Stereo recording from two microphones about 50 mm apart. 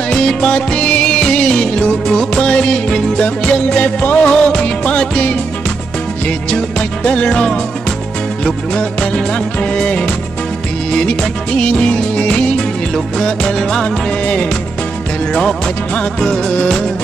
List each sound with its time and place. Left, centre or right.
0.1 s music: centre
4.3 s music: centre
7.1 s music: centre
8.7 s music: left
11.1 s music: left
16.2 s music: centre